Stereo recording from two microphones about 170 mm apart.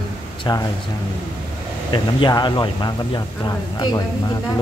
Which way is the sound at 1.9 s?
25° left (ahead or behind).